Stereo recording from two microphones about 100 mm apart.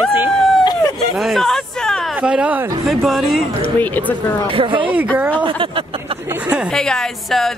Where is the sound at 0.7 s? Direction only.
40° left (ahead or behind).